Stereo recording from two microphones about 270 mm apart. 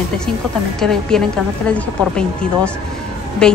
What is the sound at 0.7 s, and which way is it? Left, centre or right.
A woman's voice, centre.